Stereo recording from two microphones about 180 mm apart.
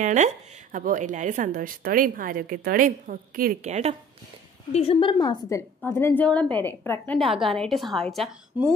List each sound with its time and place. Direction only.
0.0 s speech: 45° right (ahead or behind)
4.7 s a woman's voice: 30° left (ahead or behind); by 7.2 s 10° left (ahead or behind)
7.2 s a woman's voice: centre (ahead or behind)